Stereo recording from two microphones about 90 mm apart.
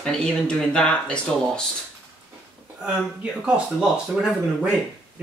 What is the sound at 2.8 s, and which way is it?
Speech, 10° right (ahead or behind).